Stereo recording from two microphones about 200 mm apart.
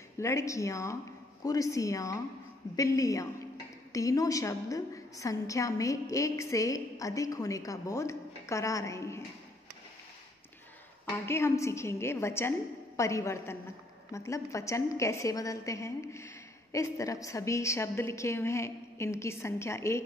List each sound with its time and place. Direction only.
0.2 s a woman's voice: 15° left (ahead or behind)
11.1 s a woman's voice: 10° left (ahead or behind)